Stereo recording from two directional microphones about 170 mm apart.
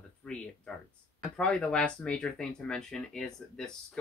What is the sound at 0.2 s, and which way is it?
Speech, 5° left (ahead or behind).